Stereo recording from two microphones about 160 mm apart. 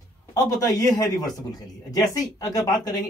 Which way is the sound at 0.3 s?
20° left (ahead or behind).